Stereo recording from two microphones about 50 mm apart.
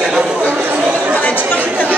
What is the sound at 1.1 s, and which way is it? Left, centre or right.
Chatter, left.